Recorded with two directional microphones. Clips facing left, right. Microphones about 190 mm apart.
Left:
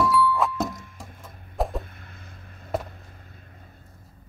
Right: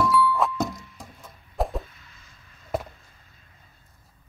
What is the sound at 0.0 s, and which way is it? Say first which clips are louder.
Music: even; centre (ahead or behind).